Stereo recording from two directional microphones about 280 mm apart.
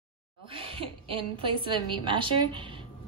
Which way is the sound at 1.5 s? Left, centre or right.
Centre.